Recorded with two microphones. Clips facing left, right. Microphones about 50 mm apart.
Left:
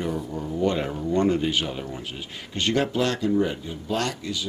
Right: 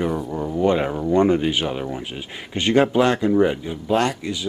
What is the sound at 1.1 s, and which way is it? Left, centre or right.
Speech, centre.